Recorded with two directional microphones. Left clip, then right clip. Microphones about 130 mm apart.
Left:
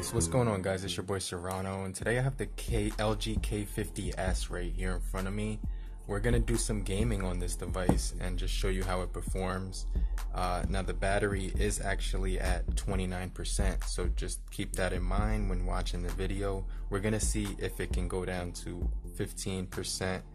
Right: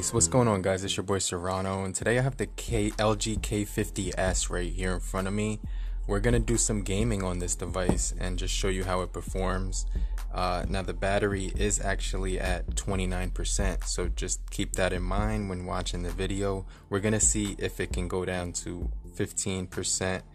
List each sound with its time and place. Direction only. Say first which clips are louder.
0.0 s speech: right 6 dB; 40° right (ahead or behind)